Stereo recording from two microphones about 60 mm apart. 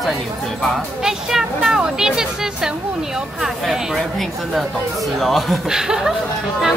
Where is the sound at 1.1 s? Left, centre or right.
Centre.